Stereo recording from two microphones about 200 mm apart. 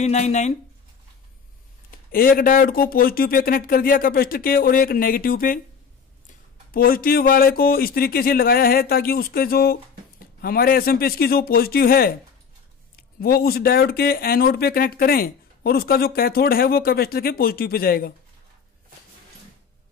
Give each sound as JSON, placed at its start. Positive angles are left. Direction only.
{"t": 0.0, "sound": "speech", "side_deg": 35}
{"t": 1.9, "sound": "speech", "side_deg": 45}
{"t": 6.7, "sound": "speech", "side_deg": 45}
{"t": 13.2, "sound": "speech", "side_deg": 50}